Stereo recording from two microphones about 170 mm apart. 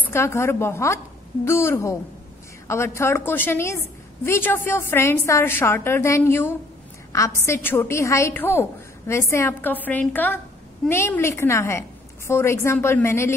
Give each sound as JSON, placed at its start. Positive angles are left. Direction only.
{"t": 0.0, "sound": "a woman's voice", "side_deg": 15}